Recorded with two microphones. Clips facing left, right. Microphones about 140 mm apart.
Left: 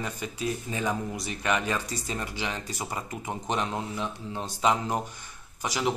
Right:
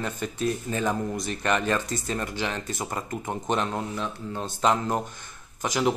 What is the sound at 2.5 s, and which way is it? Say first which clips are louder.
Speech: right 3 dB; 50° right (ahead or behind).